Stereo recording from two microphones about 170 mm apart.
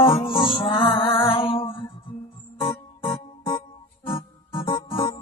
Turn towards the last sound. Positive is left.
turn(degrees=30)  # may be behind; listen again after turning